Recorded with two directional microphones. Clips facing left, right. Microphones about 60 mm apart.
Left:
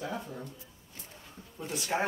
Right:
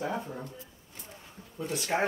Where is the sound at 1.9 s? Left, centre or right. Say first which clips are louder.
Right 2 dB; right.